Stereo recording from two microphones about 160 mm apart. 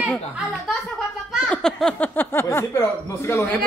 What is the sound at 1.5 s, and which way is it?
Snicker, 5° left (ahead or behind).